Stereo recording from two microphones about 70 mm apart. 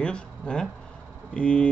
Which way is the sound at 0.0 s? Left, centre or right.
Centre.